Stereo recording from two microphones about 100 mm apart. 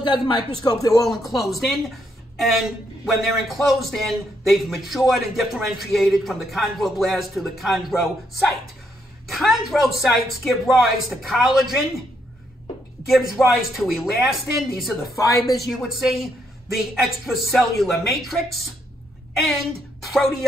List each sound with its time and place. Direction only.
0.0 s speech: 50° left (ahead or behind)
0.7 s a woman's voice: 35° left (ahead or behind)
1.5 s a man's voice: centre (ahead or behind)
13.0 s a man's voice: centre (ahead or behind)
15.1 s a woman's voice: 30° left (ahead or behind)
15.8 s a man's voice: centre (ahead or behind)